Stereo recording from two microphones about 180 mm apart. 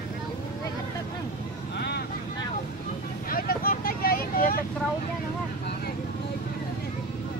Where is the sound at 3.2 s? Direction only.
55° left (ahead or behind).